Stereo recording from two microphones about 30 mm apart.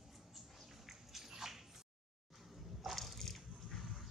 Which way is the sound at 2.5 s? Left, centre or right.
Centre.